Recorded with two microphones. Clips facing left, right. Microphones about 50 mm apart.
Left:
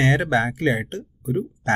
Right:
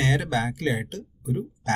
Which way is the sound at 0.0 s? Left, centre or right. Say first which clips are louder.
Left 5 dB; left.